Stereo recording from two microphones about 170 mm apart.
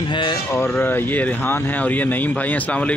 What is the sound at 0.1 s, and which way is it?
Speech, 30° left (ahead or behind).